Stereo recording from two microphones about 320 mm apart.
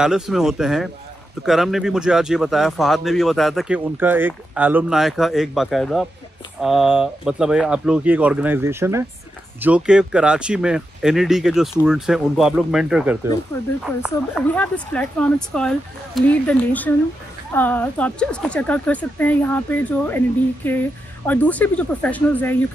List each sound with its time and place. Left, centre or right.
0.0 s speech: centre